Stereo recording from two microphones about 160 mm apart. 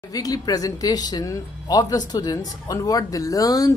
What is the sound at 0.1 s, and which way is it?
Speech, 25° left (ahead or behind).